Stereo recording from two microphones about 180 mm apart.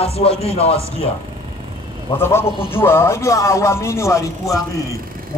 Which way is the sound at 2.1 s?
15° left (ahead or behind).